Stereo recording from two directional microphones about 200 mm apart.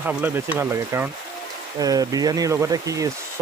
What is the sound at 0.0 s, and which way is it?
Speech, 10° right (ahead or behind).